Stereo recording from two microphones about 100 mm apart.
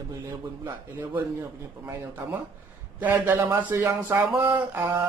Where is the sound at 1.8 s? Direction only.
25° right (ahead or behind).